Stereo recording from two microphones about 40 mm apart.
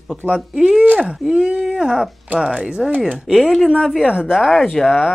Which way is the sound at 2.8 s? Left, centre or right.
Centre.